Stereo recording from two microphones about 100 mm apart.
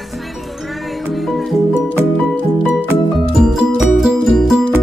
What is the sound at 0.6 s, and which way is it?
Music, centre (ahead or behind).